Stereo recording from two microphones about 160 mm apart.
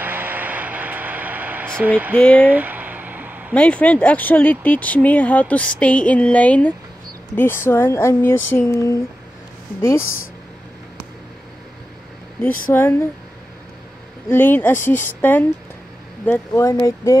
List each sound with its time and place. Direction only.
0.0 s a sound: 10° right (ahead or behind)
2.1 s speech: 5° left (ahead or behind)
2.4 s a sound: 10° right (ahead or behind)
3.5 s speech: 5° left (ahead or behind)
12.7 s speech: 15° left (ahead or behind)
14.3 s speech: 15° left (ahead or behind)